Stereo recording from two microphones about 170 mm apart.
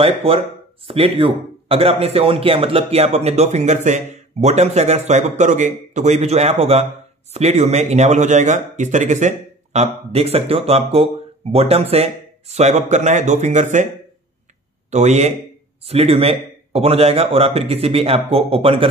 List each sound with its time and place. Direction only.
0.0 s speech: 35° right (ahead or behind)
14.9 s speech: 40° right (ahead or behind)